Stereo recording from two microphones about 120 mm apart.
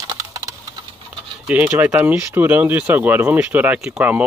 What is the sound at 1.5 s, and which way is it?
Speech, 15° right (ahead or behind).